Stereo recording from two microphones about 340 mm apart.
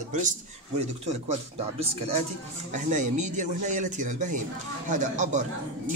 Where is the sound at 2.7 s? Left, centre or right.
Right.